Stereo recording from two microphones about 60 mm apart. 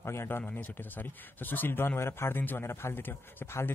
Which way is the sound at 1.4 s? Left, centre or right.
Left.